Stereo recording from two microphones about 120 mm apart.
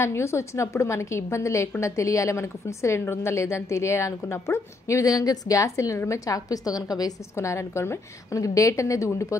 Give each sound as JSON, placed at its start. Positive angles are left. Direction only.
{"t": 0.0, "sound": "a woman's voice", "side_deg": 20}